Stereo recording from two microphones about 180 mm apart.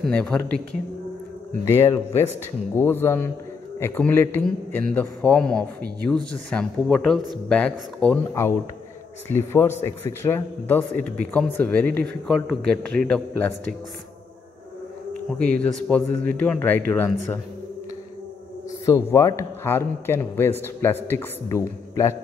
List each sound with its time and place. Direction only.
0.0 s a man's voice: 5° left (ahead or behind)
15.3 s a man's voice: 5° left (ahead or behind)
18.9 s a man's voice: 15° left (ahead or behind)